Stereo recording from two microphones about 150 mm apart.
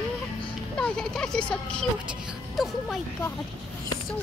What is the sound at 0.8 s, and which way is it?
A woman's voice, 5° left (ahead or behind).